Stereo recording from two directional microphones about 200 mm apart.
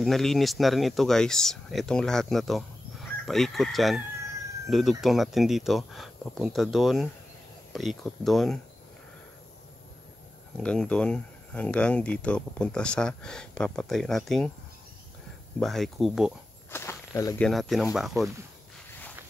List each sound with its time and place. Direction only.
0.0 s speech: centre (ahead or behind)
10.6 s speech: 5° left (ahead or behind)
15.6 s speech: centre (ahead or behind)
16.7 s speech: 10° left (ahead or behind)
17.5 s speech: centre (ahead or behind)
18.1 s speech: 15° right (ahead or behind)